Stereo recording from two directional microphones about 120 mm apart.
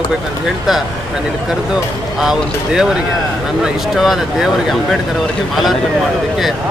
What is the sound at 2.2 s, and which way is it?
Speech, 5° right (ahead or behind).